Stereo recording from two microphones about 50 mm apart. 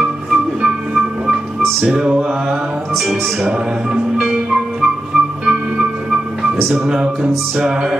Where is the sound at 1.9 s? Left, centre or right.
Centre.